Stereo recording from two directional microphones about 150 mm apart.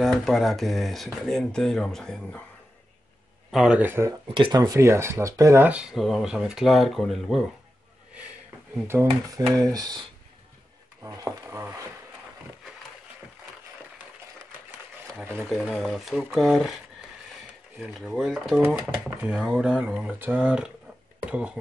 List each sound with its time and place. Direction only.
0.0 s speech: centre (ahead or behind)
3.5 s speech: 5° right (ahead or behind)
4.3 s speech: 30° right (ahead or behind); by 7.4 s centre (ahead or behind)
8.8 s speech: 15° right (ahead or behind)
15.5 s speech: centre (ahead or behind)